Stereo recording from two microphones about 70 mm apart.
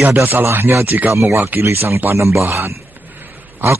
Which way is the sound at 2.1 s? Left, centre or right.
Right.